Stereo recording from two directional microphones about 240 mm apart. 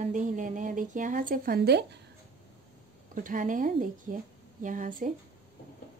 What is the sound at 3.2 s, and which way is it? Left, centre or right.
Speech, right.